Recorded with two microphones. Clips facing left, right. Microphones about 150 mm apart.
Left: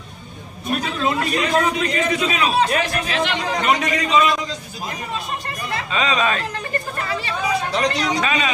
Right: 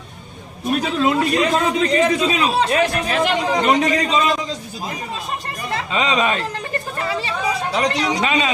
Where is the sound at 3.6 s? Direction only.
30° right (ahead or behind).